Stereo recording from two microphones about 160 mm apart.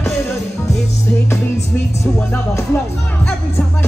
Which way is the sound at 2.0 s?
15° left (ahead or behind).